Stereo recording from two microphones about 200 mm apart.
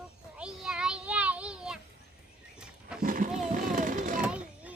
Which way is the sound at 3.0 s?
45° right (ahead or behind).